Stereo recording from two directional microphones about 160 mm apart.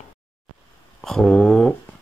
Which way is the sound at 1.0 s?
5° left (ahead or behind).